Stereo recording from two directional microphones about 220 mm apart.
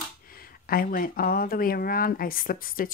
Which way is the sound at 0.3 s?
40° left (ahead or behind).